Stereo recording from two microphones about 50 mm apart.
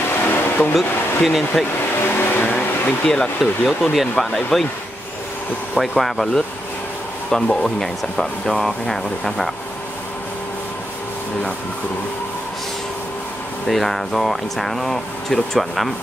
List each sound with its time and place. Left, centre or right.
0.2 s a sound: left
0.7 s speech: centre
2.1 s vehicle: left
3.1 s speech: centre
5.8 s speech: centre
13.7 s speech: centre